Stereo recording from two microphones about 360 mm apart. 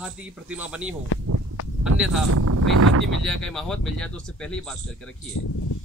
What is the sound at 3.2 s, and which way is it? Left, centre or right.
Speech, centre.